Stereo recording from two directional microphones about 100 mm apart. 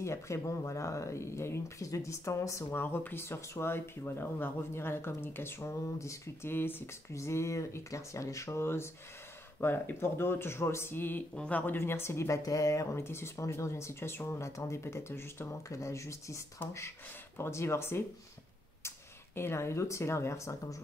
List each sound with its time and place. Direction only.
0.0 s speech: 30° left (ahead or behind)
2.8 s speech: 20° left (ahead or behind)